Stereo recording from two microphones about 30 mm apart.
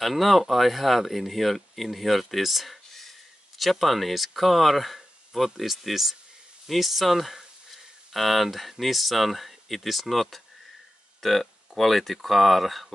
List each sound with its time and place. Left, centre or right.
0.0 s speech: centre